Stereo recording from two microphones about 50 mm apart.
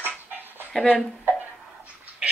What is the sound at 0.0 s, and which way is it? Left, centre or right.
Dog, right.